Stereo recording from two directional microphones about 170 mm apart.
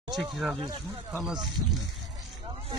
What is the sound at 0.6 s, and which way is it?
Speech, 20° right (ahead or behind).